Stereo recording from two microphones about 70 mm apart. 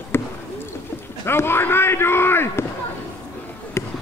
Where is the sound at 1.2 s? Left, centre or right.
Left.